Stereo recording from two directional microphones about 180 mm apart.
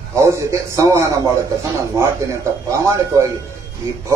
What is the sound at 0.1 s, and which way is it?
Speech, 15° right (ahead or behind).